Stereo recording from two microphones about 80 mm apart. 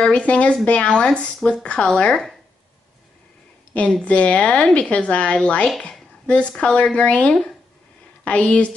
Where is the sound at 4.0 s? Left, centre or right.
Centre.